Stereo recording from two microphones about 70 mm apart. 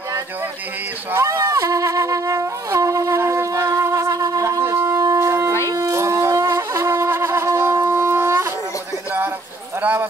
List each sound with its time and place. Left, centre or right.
1.1 s shofar: right
9.8 s clip-clop: right